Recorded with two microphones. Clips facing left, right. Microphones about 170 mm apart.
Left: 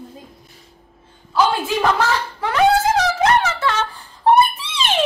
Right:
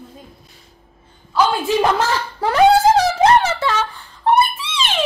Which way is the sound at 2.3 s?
35° right (ahead or behind).